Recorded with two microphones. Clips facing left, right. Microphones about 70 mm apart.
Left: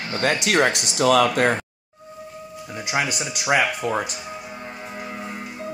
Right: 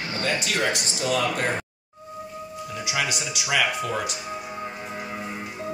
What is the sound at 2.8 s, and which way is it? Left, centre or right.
Speech, left.